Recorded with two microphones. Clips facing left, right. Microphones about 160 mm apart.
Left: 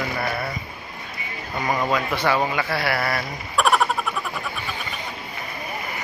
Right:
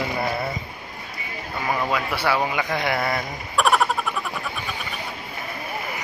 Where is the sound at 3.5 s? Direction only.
Centre (ahead or behind).